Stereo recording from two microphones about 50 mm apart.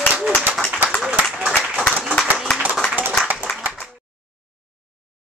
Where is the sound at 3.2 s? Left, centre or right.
Right.